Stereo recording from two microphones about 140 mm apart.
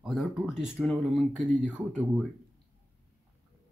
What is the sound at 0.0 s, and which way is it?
Speech, 5° right (ahead or behind).